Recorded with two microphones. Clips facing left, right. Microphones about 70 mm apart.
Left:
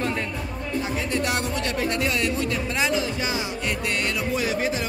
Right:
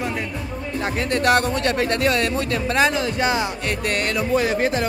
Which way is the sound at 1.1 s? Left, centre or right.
Right.